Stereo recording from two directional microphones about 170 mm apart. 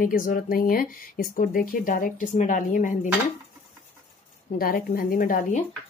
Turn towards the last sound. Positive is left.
turn(degrees=55)  # may be behind; listen again after turning